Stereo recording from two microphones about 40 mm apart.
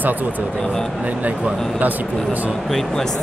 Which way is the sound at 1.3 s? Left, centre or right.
Right.